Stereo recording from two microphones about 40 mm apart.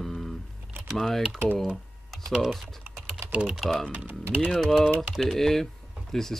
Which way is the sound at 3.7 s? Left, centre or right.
Centre.